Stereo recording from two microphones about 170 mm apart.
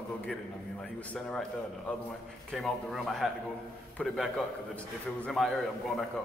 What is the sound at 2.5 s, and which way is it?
A man's voice, centre (ahead or behind).